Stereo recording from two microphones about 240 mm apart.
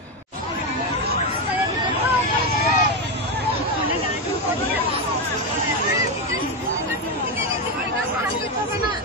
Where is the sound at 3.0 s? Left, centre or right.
Right.